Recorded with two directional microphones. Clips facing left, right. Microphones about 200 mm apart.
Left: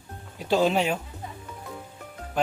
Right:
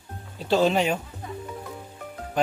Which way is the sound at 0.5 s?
10° left (ahead or behind).